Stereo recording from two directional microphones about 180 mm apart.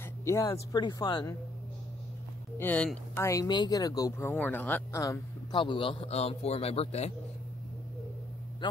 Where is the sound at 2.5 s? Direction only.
10° left (ahead or behind); by 7.1 s 35° left (ahead or behind).